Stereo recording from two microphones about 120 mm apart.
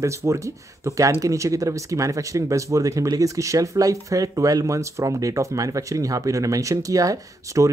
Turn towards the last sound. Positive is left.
turn(degrees=-30)  # may be behind; listen again after turning